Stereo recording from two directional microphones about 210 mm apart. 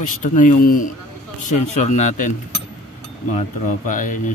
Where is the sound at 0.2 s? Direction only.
40° left (ahead or behind).